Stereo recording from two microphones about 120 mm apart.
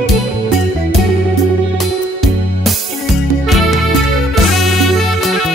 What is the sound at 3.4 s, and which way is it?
Music, centre (ahead or behind).